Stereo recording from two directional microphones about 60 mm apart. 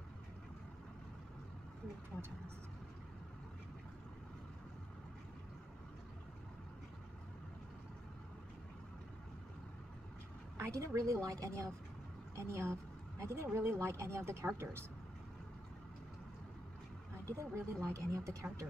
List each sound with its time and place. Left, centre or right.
10.6 s speech: right
12.4 s speech: right
17.4 s speech: right